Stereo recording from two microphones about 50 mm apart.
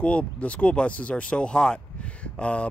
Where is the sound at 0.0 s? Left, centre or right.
Left.